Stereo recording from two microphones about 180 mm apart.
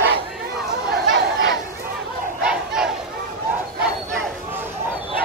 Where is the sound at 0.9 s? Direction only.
90° right.